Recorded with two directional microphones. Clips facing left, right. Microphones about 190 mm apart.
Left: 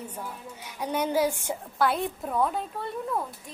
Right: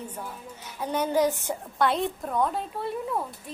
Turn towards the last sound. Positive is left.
turn(degrees=0)  # may be behind; listen again after turning